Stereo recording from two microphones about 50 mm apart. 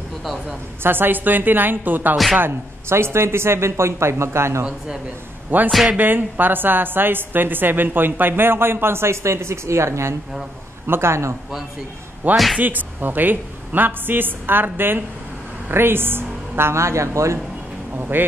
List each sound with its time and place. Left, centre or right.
0.2 s a woman's voice: centre
0.8 s a woman's voice: right
2.9 s speech: right
5.5 s a woman's voice: right
10.9 s speech: right
12.2 s a woman's voice: right
17.9 s a woman's voice: right